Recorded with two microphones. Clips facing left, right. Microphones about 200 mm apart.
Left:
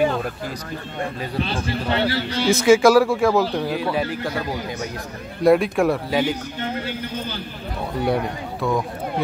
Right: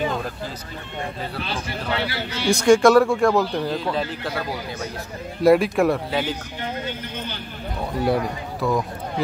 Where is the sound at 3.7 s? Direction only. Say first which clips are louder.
Left 2 dB; 10° left (ahead or behind).